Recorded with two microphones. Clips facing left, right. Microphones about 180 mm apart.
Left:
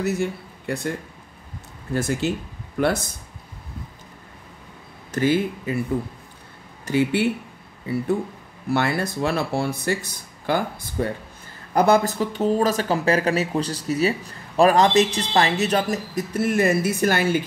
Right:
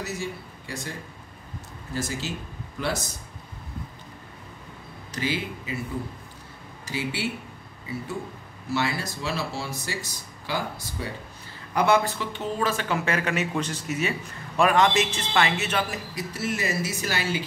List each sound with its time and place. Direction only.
0.0 s speech: 60° left (ahead or behind)
2.0 s speech: 60° left (ahead or behind)
5.1 s speech: 50° left (ahead or behind)
6.9 s speech: 55° left (ahead or behind)
8.6 s speech: 55° left (ahead or behind)
11.7 s speech: 40° left (ahead or behind)